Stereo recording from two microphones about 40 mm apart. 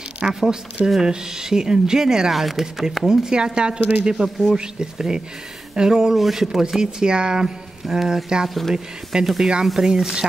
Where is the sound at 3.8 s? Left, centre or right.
Right.